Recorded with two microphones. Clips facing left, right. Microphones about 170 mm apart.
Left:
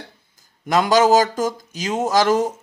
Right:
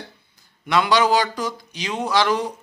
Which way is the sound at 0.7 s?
45° left (ahead or behind).